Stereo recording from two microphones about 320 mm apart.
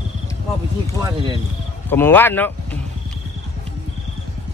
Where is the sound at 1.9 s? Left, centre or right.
Centre.